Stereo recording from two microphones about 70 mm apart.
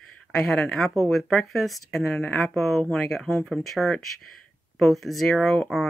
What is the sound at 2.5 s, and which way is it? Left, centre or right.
Speech, centre.